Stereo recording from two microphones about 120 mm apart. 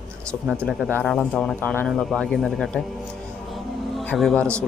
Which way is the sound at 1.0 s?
5° left (ahead or behind).